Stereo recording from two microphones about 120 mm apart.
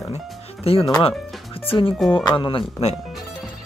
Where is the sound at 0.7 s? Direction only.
55° left (ahead or behind).